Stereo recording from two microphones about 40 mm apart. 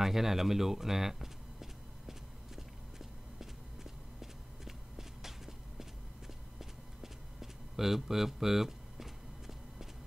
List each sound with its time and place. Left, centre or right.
0.0 s a sound: centre
3.3 s walk: centre
6.6 s clip-clop: centre